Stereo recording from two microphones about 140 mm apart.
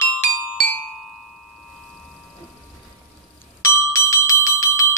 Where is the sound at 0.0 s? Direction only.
10° left (ahead or behind).